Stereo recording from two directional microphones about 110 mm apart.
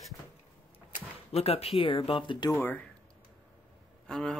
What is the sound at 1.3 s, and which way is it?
Speech, 65° left (ahead or behind).